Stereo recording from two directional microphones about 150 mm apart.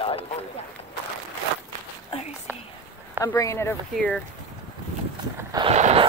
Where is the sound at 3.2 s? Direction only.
20° left (ahead or behind).